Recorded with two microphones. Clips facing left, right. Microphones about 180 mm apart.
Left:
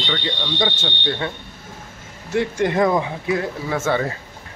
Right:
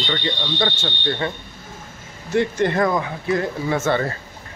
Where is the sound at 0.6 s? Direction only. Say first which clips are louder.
Left 2 dB; 15° left (ahead or behind).